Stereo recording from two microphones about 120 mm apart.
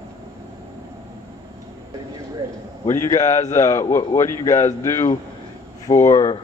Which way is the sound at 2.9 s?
25° left (ahead or behind).